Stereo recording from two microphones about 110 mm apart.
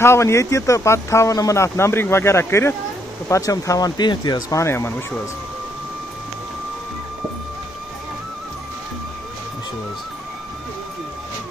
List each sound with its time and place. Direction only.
0.0 s speech: 25° left (ahead or behind); by 4.6 s 40° left (ahead or behind)
4.6 s speech: 25° left (ahead or behind)